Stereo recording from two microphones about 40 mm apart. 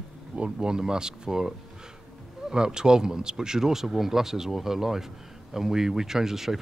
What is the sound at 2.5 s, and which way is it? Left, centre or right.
Speech, centre.